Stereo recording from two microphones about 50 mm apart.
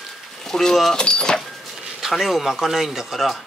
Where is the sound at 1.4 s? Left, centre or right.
Centre.